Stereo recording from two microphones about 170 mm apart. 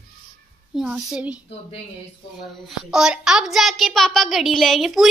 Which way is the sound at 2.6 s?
5° right (ahead or behind).